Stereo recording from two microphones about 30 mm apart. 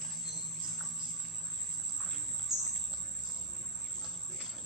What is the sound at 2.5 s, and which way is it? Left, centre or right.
Bird, centre.